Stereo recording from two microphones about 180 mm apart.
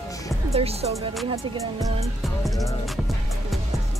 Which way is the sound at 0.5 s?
35° right (ahead or behind).